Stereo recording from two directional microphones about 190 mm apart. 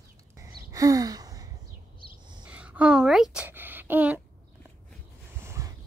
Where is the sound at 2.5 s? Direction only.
5° right (ahead or behind).